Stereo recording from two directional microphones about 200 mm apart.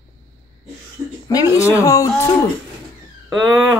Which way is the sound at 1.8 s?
15° left (ahead or behind).